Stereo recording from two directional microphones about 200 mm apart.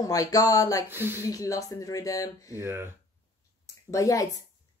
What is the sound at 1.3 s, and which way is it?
A woman's voice, 15° left (ahead or behind).